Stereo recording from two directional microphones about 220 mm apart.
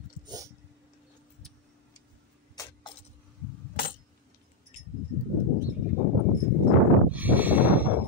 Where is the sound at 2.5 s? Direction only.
15° left (ahead or behind).